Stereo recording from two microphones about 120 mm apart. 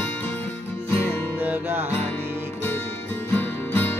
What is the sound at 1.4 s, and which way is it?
Music, 15° right (ahead or behind).